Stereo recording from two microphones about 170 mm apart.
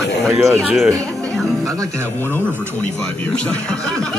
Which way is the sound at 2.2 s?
10° left (ahead or behind).